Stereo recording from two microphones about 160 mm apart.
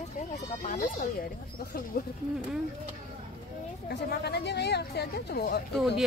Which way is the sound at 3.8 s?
90° left.